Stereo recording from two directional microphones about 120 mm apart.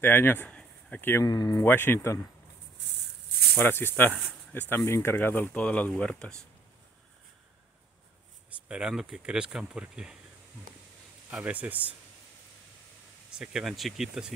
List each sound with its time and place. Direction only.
0.0 s speech: 15° left (ahead or behind)
1.2 s speech: 30° left (ahead or behind)
1.7 s speech: 20° left (ahead or behind)
3.5 s speech: 20° left (ahead or behind)
8.6 s speech: 10° right (ahead or behind)
11.2 s speech: 10° right (ahead or behind)
13.3 s speech: 5° right (ahead or behind)